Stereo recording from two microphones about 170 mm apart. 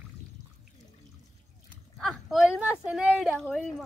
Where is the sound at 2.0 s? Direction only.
Centre (ahead or behind).